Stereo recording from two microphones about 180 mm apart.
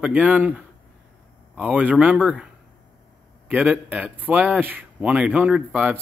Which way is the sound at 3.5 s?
10° right (ahead or behind).